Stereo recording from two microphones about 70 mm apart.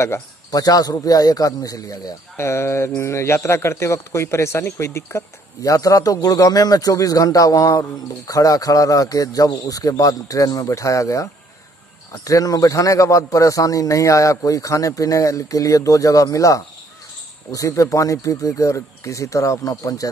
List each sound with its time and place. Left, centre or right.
0.5 s a man's voice: left
2.3 s a man's voice: left
12.3 s speech: left